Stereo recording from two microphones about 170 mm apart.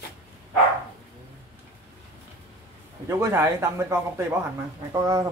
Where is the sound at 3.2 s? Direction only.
15° right (ahead or behind).